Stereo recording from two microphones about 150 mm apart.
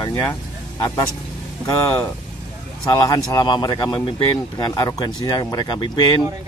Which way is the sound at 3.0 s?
25° left (ahead or behind).